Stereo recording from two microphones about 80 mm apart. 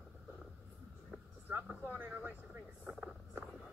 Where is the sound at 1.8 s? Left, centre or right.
Right.